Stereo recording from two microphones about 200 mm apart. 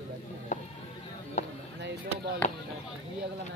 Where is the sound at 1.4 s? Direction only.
35° left (ahead or behind).